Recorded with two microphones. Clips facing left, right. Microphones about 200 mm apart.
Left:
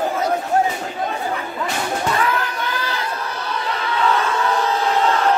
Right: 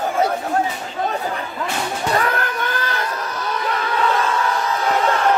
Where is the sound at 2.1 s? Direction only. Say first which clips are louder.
Right 1 dB; 50° right (ahead or behind).